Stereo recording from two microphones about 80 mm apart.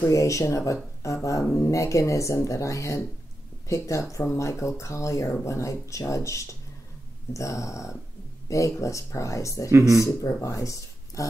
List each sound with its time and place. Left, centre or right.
0.1 s speech: left
9.7 s speech: right
10.0 s speech: left